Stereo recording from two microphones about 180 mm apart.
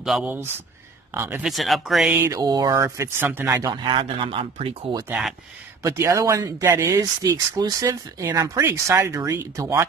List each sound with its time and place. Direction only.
0.0 s speech: 5° right (ahead or behind)
1.5 s speech: centre (ahead or behind)
2.1 s speech: 15° right (ahead or behind); by 4.7 s 30° right (ahead or behind)
5.8 s speech: 15° right (ahead or behind)